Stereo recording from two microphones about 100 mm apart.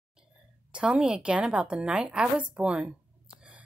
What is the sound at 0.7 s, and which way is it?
A woman's voice, 10° right (ahead or behind).